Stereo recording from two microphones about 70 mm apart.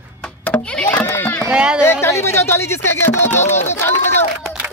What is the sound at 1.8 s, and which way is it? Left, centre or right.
Speech, left.